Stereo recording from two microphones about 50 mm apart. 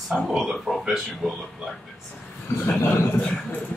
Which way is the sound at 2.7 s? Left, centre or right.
Left.